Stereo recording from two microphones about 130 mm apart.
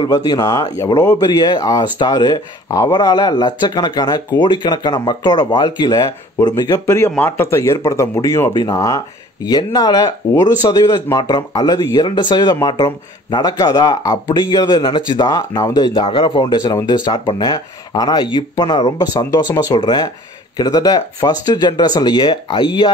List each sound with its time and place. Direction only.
0.0 s speech: 30° left (ahead or behind)
1.3 s speech: 35° left (ahead or behind)
7.2 s speech: 15° left (ahead or behind); by 22.8 s 35° left (ahead or behind)